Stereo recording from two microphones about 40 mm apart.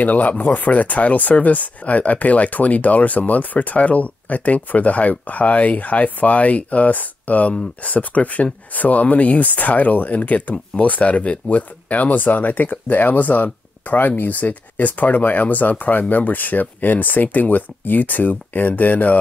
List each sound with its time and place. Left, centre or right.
0.0 s speech: left